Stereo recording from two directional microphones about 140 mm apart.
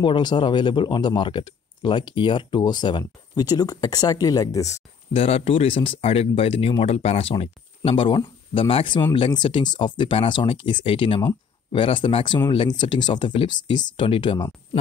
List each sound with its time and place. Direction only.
0.0 s speech: 35° left (ahead or behind)
5.1 s speech: 45° left (ahead or behind)